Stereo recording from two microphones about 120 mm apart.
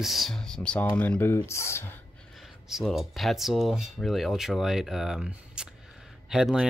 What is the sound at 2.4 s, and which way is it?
Cutlery, centre (ahead or behind).